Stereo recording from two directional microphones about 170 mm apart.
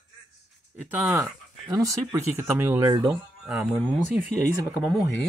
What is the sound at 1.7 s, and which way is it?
Speech, 20° right (ahead or behind).